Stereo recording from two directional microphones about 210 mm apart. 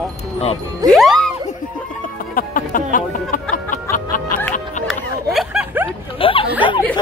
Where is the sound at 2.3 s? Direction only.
40° left (ahead or behind).